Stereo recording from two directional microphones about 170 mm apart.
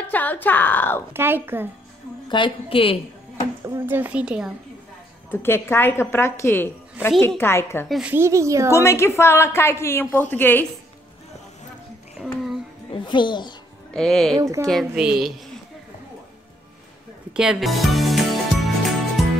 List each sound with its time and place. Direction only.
0.1 s a woman's voice: 10° left (ahead or behind)
1.1 s speech: 15° right (ahead or behind)
2.2 s a woman's voice: 30° left (ahead or behind)
3.6 s speech: 15° right (ahead or behind)
5.3 s a woman's voice: 15° left (ahead or behind)
7.9 s speech: 10° right (ahead or behind)
8.7 s a woman's voice: 15° left (ahead or behind)
12.9 s a child's voice: 25° left (ahead or behind)
13.9 s a woman's voice: centre (ahead or behind)
14.3 s speech: 20° right (ahead or behind)
14.7 s a woman's voice: centre (ahead or behind)
17.4 s music: 5° right (ahead or behind)